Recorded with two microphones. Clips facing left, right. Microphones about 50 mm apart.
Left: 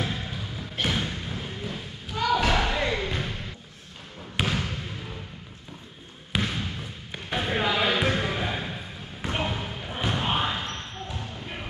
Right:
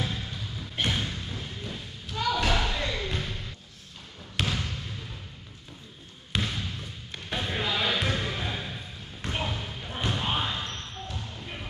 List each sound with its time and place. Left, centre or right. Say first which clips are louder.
0.0 s music: left 2 dB; centre
0.8 s a sound: left 2 dB; centre
1.1 s thump: left 3 dB; left
4.4 s trickle: left 3 dB; centre
6.3 s basketball bounce: left 3 dB; centre